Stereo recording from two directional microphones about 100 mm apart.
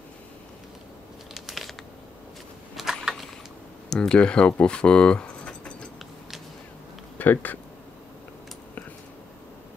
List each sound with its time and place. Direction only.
1.3 s a sound: centre (ahead or behind)
3.9 s speech: 5° left (ahead or behind)
7.2 s speech: 15° left (ahead or behind)